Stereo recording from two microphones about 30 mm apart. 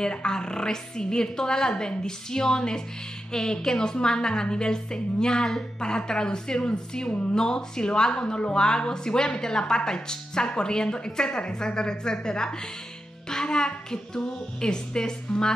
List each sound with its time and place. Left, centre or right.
0.0 s a woman's voice: left
7.1 s speech: left
7.3 s a woman's voice: left
13.3 s music: left
14.1 s a woman's voice: left